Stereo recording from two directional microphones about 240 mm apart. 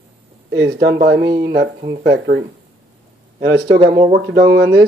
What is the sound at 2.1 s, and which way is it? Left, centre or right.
Speech, right.